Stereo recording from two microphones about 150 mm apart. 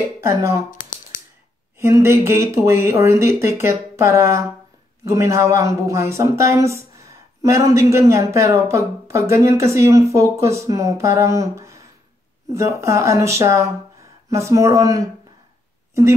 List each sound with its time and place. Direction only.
0.2 s speech: 20° right (ahead or behind)
0.7 s a sound: 60° left (ahead or behind)
1.8 s speech: 20° right (ahead or behind)